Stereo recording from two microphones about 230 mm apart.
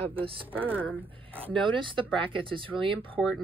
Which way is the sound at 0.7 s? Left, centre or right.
Centre.